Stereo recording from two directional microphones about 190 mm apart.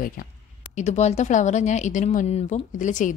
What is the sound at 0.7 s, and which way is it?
Speech, 35° left (ahead or behind).